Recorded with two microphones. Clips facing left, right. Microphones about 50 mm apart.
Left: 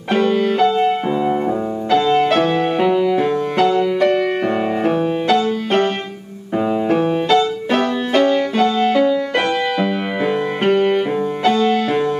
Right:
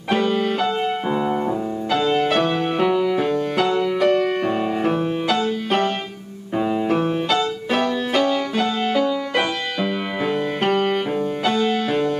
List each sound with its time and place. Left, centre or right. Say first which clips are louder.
0.1 s music: left 4 dB; centre
6.9 s music: left 5 dB; centre